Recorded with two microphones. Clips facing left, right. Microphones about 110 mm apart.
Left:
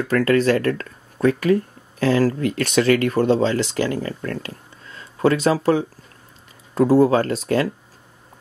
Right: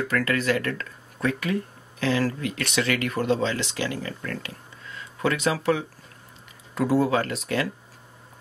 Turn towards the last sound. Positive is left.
turn(degrees=35)  # may be behind; listen again after turning